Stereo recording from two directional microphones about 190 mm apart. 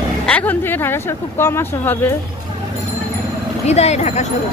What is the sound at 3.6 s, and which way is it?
Speech, 35° left (ahead or behind).